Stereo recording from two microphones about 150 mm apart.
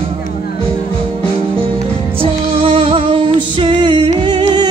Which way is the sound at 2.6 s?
35° right (ahead or behind).